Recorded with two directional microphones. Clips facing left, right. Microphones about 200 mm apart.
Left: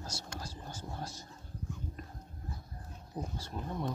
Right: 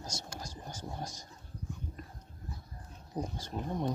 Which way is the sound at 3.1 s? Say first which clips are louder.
Right 3 dB; 20° right (ahead or behind).